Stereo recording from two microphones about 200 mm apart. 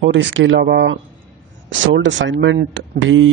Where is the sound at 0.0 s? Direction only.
70° right (ahead or behind).